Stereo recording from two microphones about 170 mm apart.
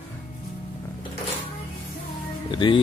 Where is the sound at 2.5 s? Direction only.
30° left (ahead or behind).